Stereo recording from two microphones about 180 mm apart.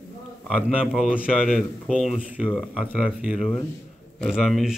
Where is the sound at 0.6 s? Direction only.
5° right (ahead or behind).